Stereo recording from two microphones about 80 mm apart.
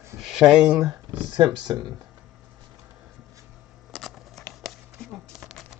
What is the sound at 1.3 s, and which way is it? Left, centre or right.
Speech, right.